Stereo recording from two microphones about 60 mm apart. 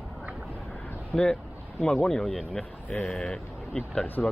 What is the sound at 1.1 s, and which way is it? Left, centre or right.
Speech, centre.